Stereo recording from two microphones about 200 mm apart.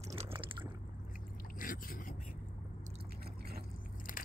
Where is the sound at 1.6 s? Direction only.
45° left (ahead or behind).